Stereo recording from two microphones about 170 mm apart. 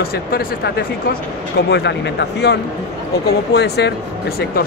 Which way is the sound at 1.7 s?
90° left.